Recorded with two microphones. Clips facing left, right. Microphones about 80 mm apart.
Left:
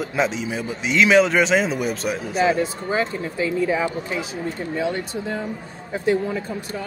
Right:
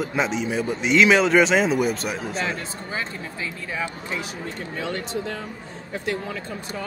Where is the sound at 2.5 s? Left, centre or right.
Left.